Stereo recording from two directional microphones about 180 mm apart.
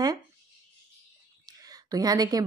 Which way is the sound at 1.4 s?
20° right (ahead or behind).